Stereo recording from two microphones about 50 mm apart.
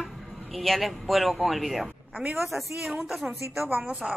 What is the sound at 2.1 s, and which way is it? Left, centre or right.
Speech, right.